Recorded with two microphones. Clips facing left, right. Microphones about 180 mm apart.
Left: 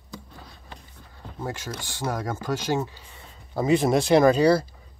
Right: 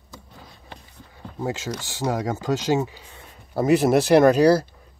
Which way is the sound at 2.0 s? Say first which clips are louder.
Right 4 dB; 15° right (ahead or behind).